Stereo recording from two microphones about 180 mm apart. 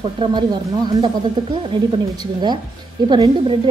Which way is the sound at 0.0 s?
25° right (ahead or behind).